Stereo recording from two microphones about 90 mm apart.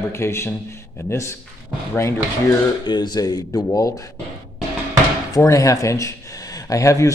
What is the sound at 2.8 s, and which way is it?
Speech, 55° left (ahead or behind).